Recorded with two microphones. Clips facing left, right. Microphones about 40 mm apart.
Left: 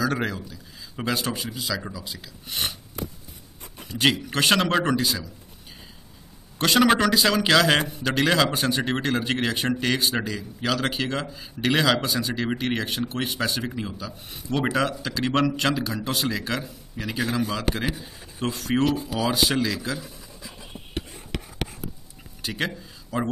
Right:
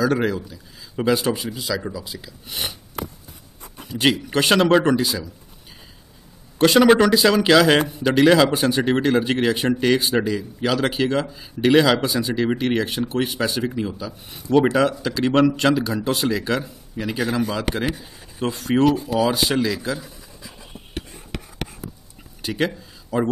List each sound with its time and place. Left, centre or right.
0.0 s a man's voice: centre
3.8 s a man's voice: centre
6.6 s a man's voice: centre
22.4 s a sound: centre